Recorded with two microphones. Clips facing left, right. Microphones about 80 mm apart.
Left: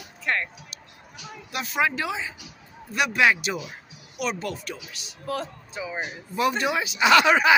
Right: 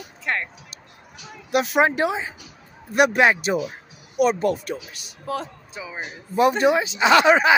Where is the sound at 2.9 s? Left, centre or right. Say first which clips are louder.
Right 8 dB; right.